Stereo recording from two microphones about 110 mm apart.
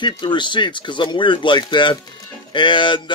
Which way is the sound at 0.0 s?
45° left (ahead or behind).